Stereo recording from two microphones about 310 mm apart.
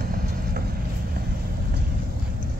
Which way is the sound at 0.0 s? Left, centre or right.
Right.